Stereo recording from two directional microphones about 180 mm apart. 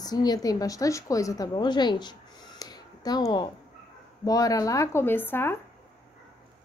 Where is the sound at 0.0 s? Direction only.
20° left (ahead or behind).